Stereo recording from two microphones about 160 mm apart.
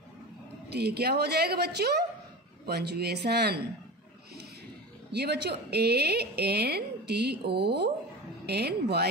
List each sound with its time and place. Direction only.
0.7 s a woman's voice: 90° right
5.1 s a woman's voice: 90° right